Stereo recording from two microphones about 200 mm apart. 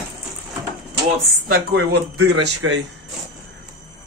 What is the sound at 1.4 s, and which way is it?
Speech, 50° right (ahead or behind).